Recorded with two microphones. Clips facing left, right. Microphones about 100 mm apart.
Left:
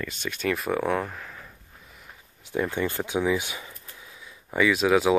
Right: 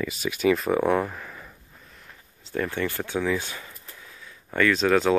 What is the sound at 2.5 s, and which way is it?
Speech, 15° left (ahead or behind).